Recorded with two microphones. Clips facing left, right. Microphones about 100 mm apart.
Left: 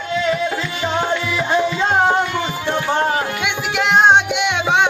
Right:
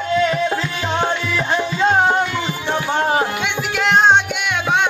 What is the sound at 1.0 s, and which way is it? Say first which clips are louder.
Music: even; 10° left (ahead or behind).